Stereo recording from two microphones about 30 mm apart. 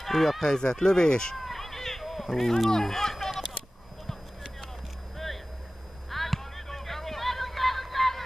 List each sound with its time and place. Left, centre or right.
0.0 s speech: centre
0.5 s speech: left
1.3 s a sound: centre
5.1 s vehicle: centre
6.0 s music: centre